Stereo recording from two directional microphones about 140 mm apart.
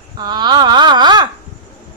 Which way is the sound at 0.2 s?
30° right (ahead or behind).